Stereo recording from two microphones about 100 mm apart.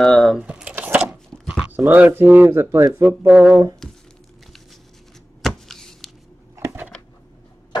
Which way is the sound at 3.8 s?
5° left (ahead or behind).